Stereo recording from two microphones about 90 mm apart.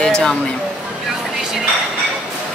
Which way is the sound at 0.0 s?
5° left (ahead or behind).